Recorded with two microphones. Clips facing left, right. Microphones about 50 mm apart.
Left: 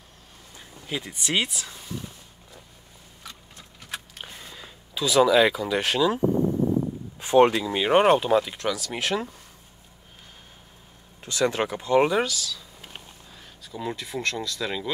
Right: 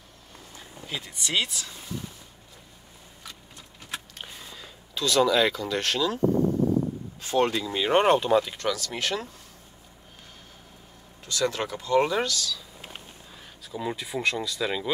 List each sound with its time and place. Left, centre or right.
1.0 s speech: left
4.3 s speech: centre
11.2 s speech: left
12.2 s speech: centre
13.7 s speech: centre